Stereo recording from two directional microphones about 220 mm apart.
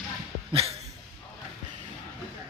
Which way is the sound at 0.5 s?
25° right (ahead or behind).